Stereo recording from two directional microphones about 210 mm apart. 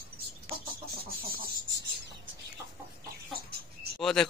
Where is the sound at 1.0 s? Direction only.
45° right (ahead or behind).